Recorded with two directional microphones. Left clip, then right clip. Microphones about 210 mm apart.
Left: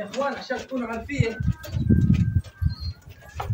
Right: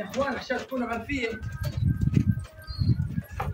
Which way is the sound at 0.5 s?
Centre (ahead or behind).